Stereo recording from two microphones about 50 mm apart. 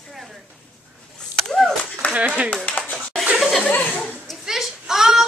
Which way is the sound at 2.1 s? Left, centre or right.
Right.